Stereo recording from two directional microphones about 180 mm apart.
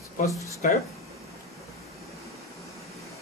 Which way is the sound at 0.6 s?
45° left (ahead or behind).